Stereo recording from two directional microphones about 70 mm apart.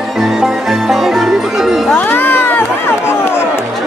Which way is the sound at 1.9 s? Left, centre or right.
Left.